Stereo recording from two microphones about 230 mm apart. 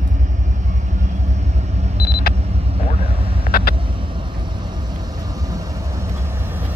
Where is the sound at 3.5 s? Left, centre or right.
Left.